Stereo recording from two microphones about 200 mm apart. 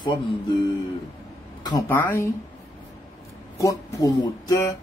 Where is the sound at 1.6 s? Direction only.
20° left (ahead or behind).